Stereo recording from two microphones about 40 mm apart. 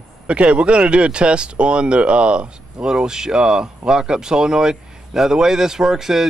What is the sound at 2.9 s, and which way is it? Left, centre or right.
Speech, centre.